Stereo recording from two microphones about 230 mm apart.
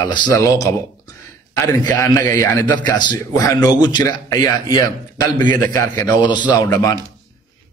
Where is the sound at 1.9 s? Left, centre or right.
Centre.